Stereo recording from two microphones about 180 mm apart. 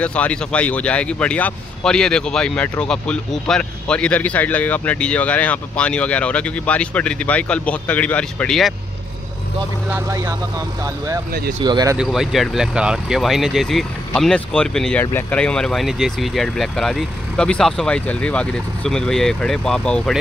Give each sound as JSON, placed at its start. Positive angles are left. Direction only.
{"t": 0.0, "sound": "speech", "side_deg": 5}
{"t": 9.8, "sound": "speech", "side_deg": -15}
{"t": 11.6, "sound": "speech", "side_deg": -20}
{"t": 12.0, "sound": "speech", "side_deg": 0}